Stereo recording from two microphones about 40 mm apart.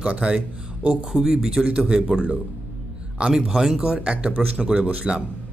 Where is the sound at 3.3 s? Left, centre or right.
Centre.